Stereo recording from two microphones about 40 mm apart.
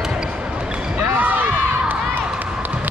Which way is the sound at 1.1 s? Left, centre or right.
Right.